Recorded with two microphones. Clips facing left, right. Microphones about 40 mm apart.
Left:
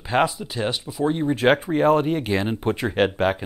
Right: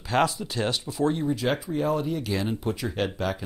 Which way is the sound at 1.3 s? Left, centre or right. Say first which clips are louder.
Left 7 dB; left.